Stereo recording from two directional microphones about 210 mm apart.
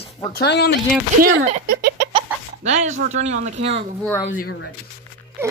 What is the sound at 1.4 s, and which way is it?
Speech, 35° right (ahead or behind).